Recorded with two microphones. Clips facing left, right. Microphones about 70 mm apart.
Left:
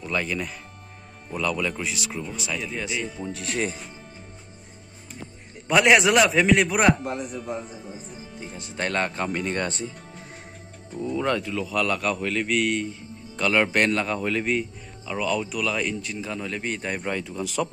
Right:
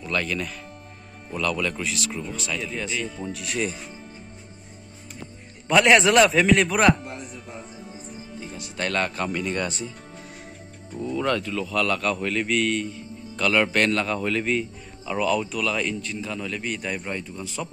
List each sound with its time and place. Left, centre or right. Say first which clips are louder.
0.0 s speech: even; centre
3.3 s speech: left 1 dB; left
5.7 s speech: right 1 dB; centre
8.5 s speech: even; left
9.3 s speech: even; left
11.0 s speech: even; centre
11.2 s speech: right 2 dB; centre
12.2 s a man's voice: even; centre
12.7 s speech: even; left
15.0 s speech: right 2 dB; centre; by 17.0 s left
17.0 s speech: left 3 dB; left